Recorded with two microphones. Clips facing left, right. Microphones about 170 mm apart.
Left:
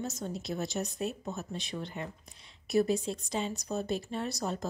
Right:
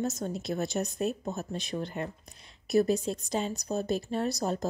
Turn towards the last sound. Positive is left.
turn(degrees=-40)  # may be behind; listen again after turning